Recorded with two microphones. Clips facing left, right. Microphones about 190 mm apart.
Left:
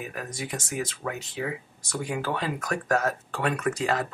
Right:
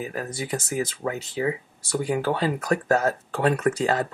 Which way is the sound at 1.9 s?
35° right (ahead or behind).